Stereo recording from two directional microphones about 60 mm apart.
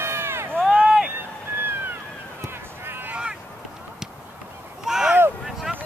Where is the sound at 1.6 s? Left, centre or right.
Right.